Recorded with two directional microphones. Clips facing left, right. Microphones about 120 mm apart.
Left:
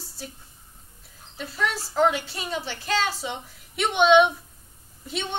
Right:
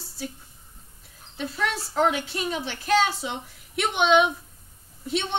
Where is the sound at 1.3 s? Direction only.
Centre (ahead or behind).